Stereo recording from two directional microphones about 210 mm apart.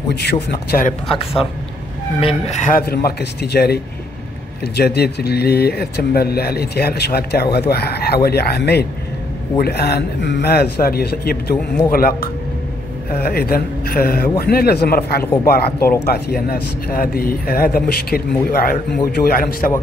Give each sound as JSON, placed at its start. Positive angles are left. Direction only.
{"t": 0.1, "sound": "speech", "side_deg": 50}
{"t": 2.1, "sound": "speech", "side_deg": 30}